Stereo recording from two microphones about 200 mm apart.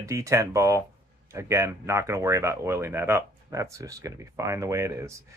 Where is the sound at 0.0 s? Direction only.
15° right (ahead or behind).